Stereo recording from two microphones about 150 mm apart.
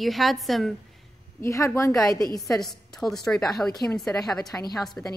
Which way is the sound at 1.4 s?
20° left (ahead or behind).